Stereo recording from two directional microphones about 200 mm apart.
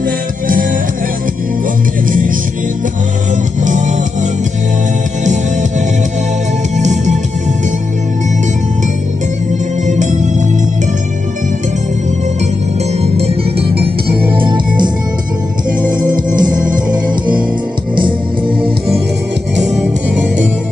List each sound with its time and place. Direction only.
2.0 s music: 45° right (ahead or behind)
3.6 s music: 40° right (ahead or behind)
6.8 s music: 35° right (ahead or behind)
9.8 s music: 35° right (ahead or behind)
13.0 s music: 30° right (ahead or behind)
16.0 s music: 40° right (ahead or behind)